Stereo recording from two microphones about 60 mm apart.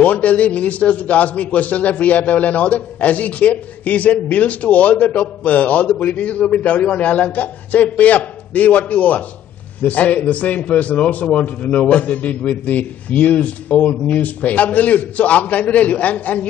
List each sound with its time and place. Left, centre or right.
0.0 s a man's voice: left